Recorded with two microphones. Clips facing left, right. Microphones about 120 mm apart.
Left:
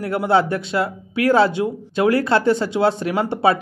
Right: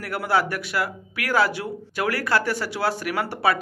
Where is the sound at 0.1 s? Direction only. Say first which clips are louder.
Left 5 dB; 25° left (ahead or behind).